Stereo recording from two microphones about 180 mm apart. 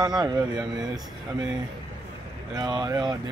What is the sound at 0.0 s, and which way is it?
Speech, 25° right (ahead or behind).